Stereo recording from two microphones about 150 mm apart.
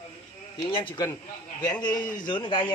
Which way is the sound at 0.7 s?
35° left (ahead or behind).